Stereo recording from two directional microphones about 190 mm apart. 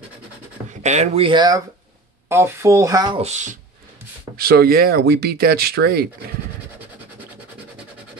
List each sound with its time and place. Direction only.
0.7 s speech: 40° right (ahead or behind)
2.2 s speech: 15° right (ahead or behind)
3.2 s speech: 35° right (ahead or behind)
4.4 s speech: 55° right (ahead or behind)